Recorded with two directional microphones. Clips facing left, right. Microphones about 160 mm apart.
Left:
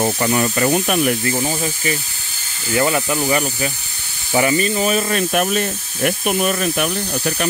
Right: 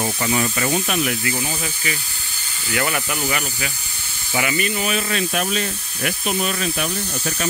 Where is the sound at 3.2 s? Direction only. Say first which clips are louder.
Left 6 dB; 35° left (ahead or behind).